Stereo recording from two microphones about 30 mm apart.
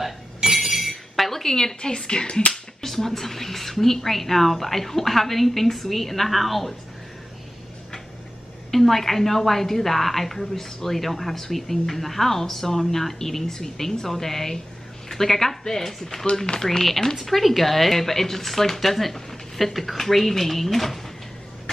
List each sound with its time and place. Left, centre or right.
0.5 s chink: centre
1.4 s speech: centre
2.5 s speech: centre
8.7 s speech: centre